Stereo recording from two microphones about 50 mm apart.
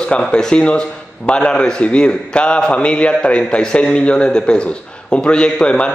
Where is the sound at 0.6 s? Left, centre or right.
Left.